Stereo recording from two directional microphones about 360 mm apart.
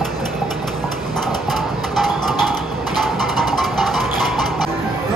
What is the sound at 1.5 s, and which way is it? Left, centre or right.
Music, centre.